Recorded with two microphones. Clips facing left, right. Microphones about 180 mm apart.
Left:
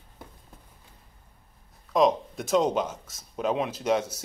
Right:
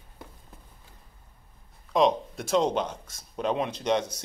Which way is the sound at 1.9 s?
Centre (ahead or behind).